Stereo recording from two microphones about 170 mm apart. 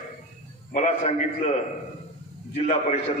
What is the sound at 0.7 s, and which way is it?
Speech, 40° left (ahead or behind).